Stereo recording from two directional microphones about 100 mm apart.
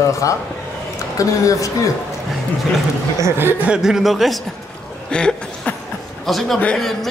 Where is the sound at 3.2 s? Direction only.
25° right (ahead or behind).